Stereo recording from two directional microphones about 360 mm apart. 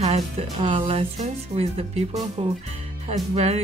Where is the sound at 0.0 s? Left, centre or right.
Centre.